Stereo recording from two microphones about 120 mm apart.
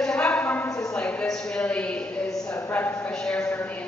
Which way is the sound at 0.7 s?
30° left (ahead or behind).